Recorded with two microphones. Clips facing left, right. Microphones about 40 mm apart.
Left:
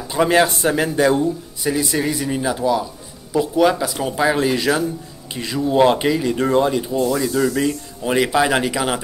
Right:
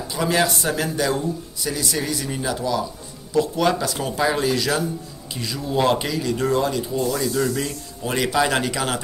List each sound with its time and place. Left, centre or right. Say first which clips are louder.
0.1 s speech: left 5 dB; left
7.0 s speech: left 4 dB; centre